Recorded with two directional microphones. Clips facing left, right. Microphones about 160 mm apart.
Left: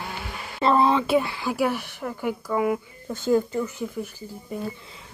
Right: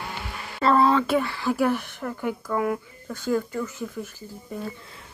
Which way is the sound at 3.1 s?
25° left (ahead or behind).